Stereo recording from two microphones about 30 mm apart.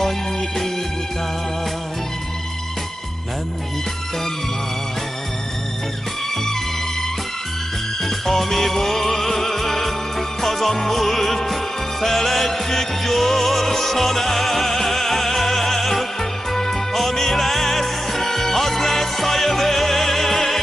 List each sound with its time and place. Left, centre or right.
8.0 s music: centre